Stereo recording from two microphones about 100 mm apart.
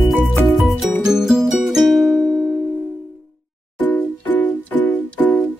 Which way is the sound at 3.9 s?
15° left (ahead or behind).